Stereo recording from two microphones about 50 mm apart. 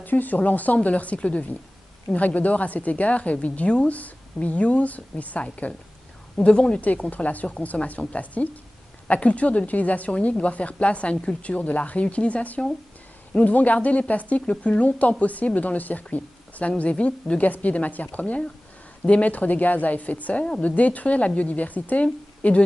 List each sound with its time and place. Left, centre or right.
0.0 s speech: left
6.8 s speech: left